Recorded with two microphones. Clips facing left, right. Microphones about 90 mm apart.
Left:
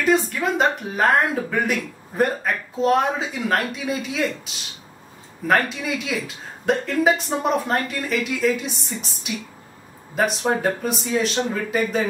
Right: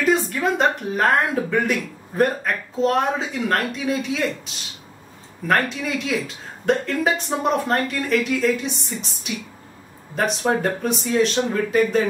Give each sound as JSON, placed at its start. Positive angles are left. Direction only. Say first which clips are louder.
{"t": 0.0, "sound": "speech", "louder": "even", "side_deg": 0}